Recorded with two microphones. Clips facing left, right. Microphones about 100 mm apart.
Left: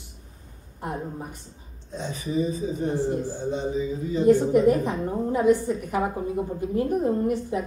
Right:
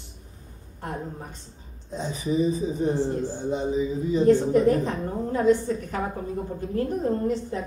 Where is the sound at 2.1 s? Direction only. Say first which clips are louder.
Right 2 dB; 20° right (ahead or behind).